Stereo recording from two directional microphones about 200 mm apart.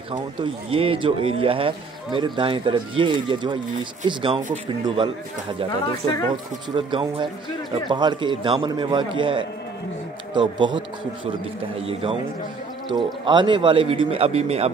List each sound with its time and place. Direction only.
0.1 s a man's voice: 25° right (ahead or behind)
6.7 s a man's voice: 25° right (ahead or behind)
11.9 s a man's voice: 30° right (ahead or behind)